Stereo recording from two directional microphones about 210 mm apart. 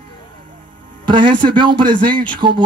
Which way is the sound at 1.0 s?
25° right (ahead or behind).